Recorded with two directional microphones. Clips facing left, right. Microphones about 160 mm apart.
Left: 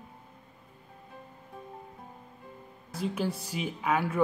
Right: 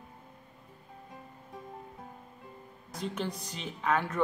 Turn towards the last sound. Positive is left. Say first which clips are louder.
# left 2 dB
turn(degrees=10)  # may be behind; listen again after turning